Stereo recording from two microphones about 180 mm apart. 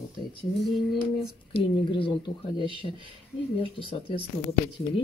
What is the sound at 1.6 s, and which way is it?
Speech, 30° left (ahead or behind).